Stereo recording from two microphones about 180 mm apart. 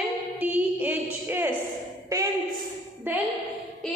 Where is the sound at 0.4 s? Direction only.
10° right (ahead or behind).